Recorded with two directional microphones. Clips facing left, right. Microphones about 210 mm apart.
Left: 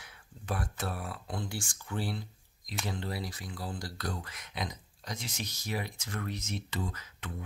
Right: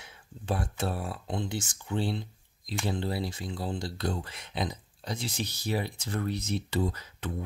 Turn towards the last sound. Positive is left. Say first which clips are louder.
# right 7 dB
turn(degrees=-35)  # may be behind; listen again after turning